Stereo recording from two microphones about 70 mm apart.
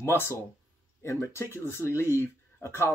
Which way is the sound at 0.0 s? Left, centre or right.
Left.